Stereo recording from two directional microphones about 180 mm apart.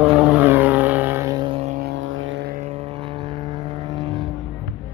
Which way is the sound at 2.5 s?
40° right (ahead or behind).